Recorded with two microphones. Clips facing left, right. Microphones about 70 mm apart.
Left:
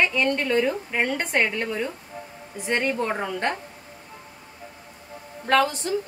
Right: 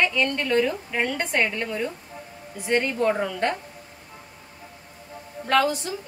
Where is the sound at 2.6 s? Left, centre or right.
Left.